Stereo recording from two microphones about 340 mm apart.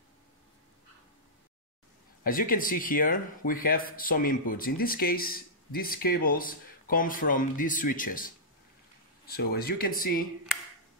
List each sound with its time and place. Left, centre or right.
2.2 s speech: left
9.3 s speech: left